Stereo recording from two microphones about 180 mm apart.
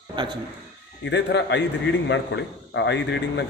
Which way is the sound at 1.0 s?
75° left (ahead or behind).